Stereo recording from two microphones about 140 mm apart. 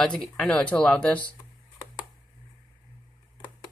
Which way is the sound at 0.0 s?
5° left (ahead or behind).